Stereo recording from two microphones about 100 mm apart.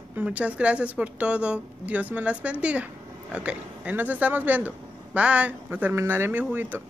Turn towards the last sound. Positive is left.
turn(degrees=-20)  # may be behind; listen again after turning